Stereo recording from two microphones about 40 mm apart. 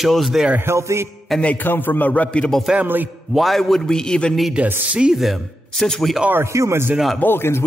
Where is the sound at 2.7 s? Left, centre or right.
Centre.